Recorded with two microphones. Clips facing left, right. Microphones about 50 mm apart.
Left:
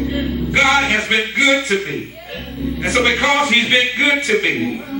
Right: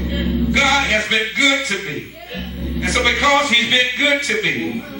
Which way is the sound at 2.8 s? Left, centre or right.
Left.